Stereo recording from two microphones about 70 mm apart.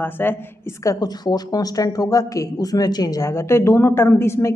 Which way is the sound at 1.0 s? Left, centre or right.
Left.